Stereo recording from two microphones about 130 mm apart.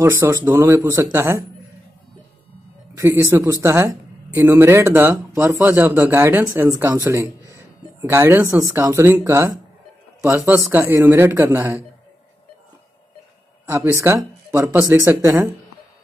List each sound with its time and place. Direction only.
0.0 s speech: 25° right (ahead or behind)
3.0 s a man's voice: 20° right (ahead or behind)
13.7 s speech: 20° right (ahead or behind)